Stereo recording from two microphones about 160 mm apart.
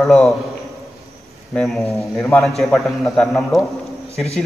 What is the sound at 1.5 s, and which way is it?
A man's voice, 5° left (ahead or behind).